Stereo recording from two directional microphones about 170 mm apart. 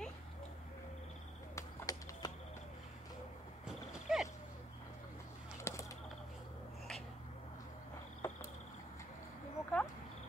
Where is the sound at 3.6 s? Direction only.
5° right (ahead or behind).